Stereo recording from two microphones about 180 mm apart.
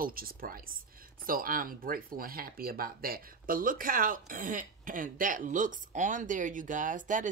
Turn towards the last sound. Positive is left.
turn(degrees=-45)  # may be behind; listen again after turning